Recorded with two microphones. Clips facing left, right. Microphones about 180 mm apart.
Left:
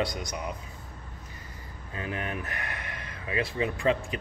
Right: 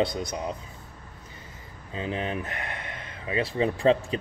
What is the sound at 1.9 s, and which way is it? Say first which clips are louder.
Speech: right 4 dB; 25° right (ahead or behind).